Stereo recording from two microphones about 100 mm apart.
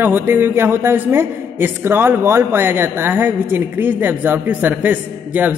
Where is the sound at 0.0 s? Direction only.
20° right (ahead or behind).